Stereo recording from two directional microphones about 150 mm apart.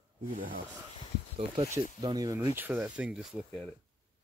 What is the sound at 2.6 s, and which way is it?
Speech, 10° right (ahead or behind).